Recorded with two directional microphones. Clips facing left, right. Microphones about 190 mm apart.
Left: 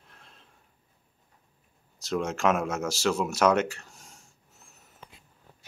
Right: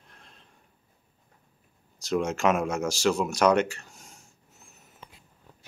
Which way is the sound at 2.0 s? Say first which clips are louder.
Right 2 dB; centre (ahead or behind).